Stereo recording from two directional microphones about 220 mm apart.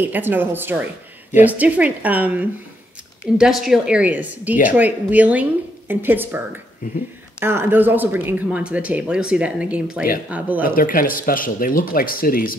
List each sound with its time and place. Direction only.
0.0 s a woman's voice: 10° right (ahead or behind)
10.6 s speech: 40° left (ahead or behind)